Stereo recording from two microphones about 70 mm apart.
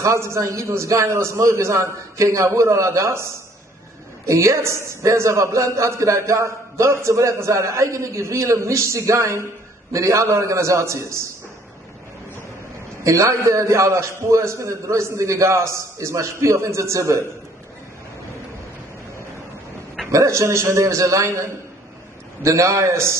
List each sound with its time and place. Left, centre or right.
0.0 s a man's voice: right
4.3 s a man's voice: right
13.0 s a man's voice: right
20.1 s a man's voice: right